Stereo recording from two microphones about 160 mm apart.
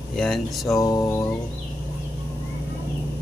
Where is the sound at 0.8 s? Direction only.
20° left (ahead or behind).